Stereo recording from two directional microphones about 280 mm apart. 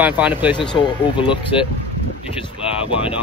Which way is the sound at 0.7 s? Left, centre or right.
Centre.